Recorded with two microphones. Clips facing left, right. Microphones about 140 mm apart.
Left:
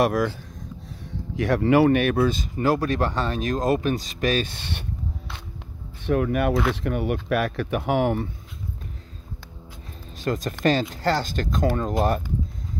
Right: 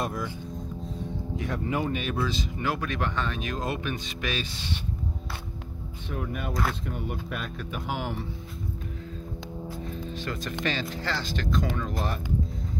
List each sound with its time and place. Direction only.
0.0 s speech: 80° left; by 2.4 s 60° left (ahead or behind)
2.6 s speech: 40° left (ahead or behind); by 4.8 s 60° left (ahead or behind)
6.0 s speech: 70° left (ahead or behind)
10.1 s speech: 40° left (ahead or behind)